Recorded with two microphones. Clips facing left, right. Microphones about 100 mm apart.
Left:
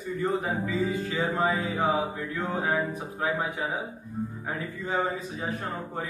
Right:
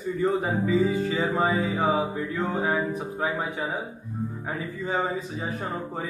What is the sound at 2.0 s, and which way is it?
Mantra, 20° right (ahead or behind).